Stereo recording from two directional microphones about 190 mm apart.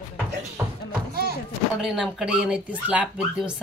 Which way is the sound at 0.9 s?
50° right (ahead or behind).